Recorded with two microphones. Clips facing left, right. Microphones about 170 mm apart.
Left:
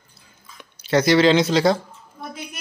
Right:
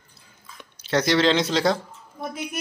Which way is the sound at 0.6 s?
5° left (ahead or behind).